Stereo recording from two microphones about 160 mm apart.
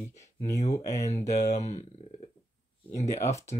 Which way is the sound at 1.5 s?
45° left (ahead or behind).